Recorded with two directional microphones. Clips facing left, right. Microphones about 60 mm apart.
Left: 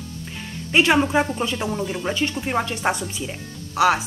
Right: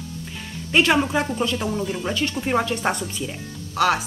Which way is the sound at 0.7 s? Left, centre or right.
Centre.